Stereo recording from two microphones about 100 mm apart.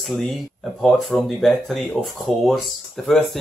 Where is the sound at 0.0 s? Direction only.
Centre (ahead or behind).